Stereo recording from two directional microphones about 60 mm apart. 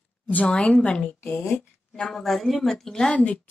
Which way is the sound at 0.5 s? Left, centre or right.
Centre.